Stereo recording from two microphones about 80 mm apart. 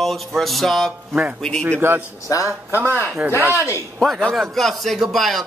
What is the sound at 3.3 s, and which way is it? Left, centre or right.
Speech, right.